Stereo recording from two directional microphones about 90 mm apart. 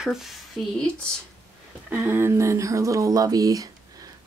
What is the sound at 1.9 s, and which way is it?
Speech, 20° right (ahead or behind).